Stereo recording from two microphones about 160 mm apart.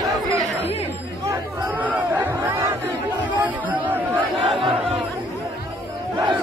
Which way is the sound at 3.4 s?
10° right (ahead or behind).